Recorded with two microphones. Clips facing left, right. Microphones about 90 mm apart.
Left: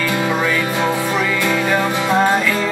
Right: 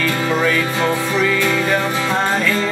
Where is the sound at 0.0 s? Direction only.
15° left (ahead or behind).